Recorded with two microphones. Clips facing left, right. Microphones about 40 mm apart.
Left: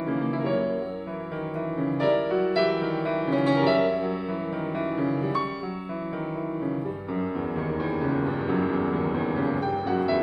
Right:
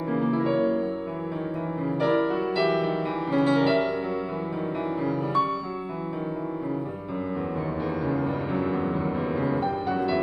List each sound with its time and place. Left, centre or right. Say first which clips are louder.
0.3 s music: right 4 dB; centre
2.0 s music: even; centre
8.0 s music: left 1 dB; centre
9.6 s music: even; centre